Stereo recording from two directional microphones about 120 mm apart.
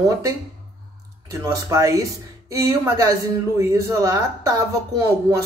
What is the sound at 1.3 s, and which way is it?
Speech, 25° right (ahead or behind).